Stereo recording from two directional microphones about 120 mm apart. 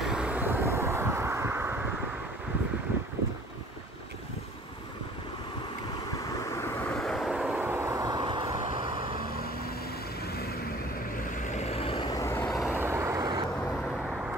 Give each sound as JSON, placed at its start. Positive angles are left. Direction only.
{"t": 0.0, "sound": "vehicle", "side_deg": -5}
{"t": 6.5, "sound": "vehicle", "side_deg": 20}
{"t": 6.9, "sound": "vehicle", "side_deg": 5}
{"t": 8.2, "sound": "vehicle", "side_deg": -45}
{"t": 11.5, "sound": "vehicle", "side_deg": 60}
{"t": 12.1, "sound": "vehicle", "side_deg": 25}
{"t": 12.4, "sound": "vehicle", "side_deg": 0}
{"t": 12.7, "sound": "vehicle", "side_deg": -20}